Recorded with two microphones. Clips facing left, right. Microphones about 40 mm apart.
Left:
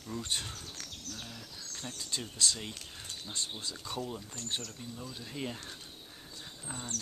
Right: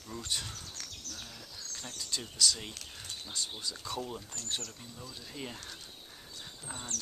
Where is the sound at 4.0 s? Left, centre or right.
Centre.